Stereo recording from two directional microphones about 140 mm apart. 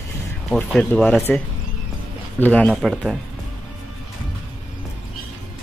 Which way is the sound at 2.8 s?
Centre (ahead or behind).